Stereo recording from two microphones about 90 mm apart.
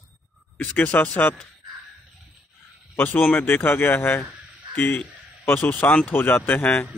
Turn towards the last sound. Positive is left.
turn(degrees=20)  # may be behind; listen again after turning